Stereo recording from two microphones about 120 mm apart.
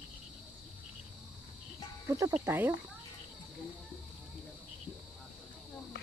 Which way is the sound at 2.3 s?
15° right (ahead or behind).